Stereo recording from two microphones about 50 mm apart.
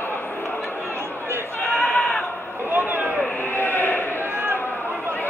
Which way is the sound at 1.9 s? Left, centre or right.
Centre.